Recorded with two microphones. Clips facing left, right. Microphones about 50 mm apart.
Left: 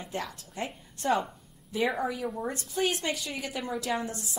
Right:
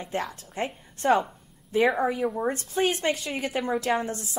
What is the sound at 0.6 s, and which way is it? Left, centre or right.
A woman's voice, right.